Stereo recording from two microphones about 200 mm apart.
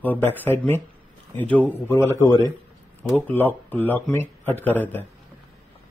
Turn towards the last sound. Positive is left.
turn(degrees=10)  # may be behind; listen again after turning